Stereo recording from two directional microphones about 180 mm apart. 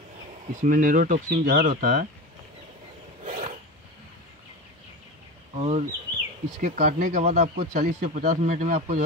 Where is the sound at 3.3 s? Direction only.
40° right (ahead or behind).